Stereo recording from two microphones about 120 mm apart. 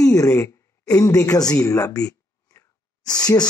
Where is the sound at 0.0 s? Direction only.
25° left (ahead or behind).